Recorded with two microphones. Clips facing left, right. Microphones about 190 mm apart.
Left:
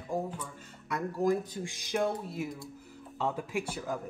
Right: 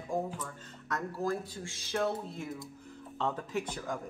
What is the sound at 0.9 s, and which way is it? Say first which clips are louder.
Speech: left 5 dB; 15° left (ahead or behind).